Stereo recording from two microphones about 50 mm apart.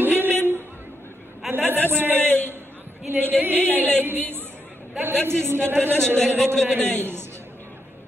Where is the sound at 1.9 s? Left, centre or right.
Right.